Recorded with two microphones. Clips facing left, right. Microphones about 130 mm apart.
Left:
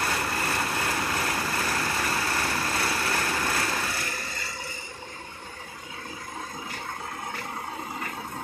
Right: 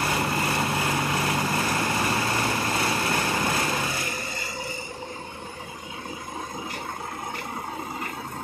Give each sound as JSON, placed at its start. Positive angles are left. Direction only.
{"t": 0.1, "sound": "vehicle", "side_deg": -15}